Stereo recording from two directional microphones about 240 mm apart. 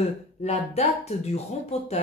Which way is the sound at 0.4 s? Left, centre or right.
Left.